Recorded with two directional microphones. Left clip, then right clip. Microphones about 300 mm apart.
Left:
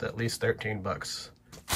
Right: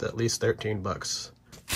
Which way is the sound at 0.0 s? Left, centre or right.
Centre.